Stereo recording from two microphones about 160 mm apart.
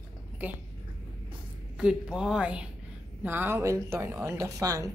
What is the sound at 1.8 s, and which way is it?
A woman's voice, 5° right (ahead or behind).